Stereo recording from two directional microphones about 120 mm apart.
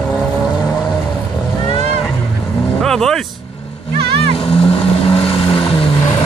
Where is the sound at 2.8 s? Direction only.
5° left (ahead or behind).